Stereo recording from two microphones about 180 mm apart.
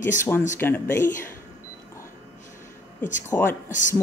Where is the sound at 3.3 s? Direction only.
15° left (ahead or behind).